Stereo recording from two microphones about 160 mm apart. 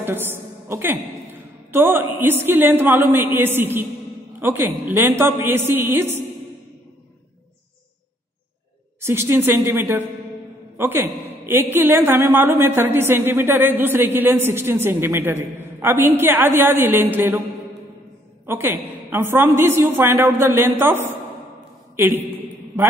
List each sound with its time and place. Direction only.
0.0 s a woman's voice: 15° right (ahead or behind)
9.0 s a woman's voice: 15° right (ahead or behind)
18.4 s a woman's voice: 15° right (ahead or behind)